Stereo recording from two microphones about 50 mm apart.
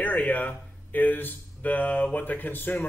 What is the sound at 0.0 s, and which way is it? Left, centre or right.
A man's voice, left.